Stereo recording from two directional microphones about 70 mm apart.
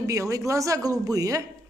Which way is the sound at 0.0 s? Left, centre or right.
Right.